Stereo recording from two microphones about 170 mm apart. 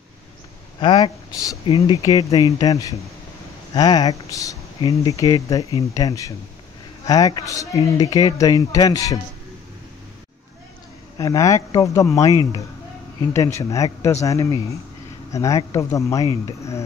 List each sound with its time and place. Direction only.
0.7 s speech: 30° left (ahead or behind)
11.1 s speech: 20° left (ahead or behind)